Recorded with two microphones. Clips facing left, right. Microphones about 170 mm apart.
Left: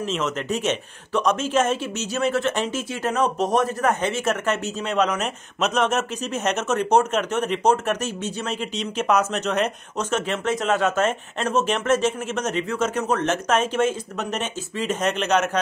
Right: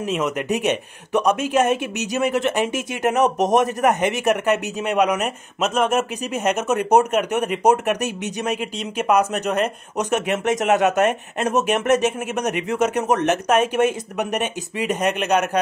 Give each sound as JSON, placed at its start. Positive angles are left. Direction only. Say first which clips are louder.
{"t": 0.0, "sound": "speech", "louder": "right 3 dB", "side_deg": -10}